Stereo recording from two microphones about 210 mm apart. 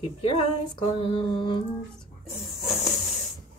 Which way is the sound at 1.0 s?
25° left (ahead or behind).